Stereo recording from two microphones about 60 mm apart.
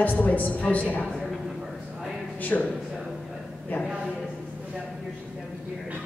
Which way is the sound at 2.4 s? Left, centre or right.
Left.